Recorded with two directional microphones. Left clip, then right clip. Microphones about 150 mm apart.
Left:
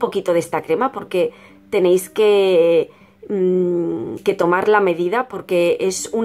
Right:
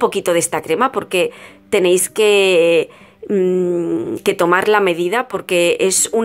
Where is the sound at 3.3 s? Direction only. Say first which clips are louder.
Right 2 dB; 5° right (ahead or behind).